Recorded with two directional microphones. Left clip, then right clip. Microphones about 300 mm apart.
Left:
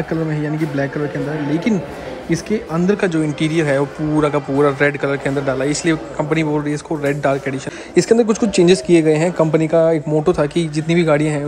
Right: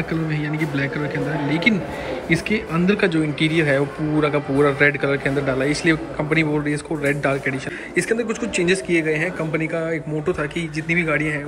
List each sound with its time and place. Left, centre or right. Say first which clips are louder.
1.5 s a man's voice: right 3 dB; centre